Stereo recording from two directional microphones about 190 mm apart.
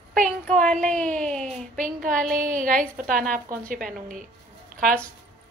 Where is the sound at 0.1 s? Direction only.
45° right (ahead or behind).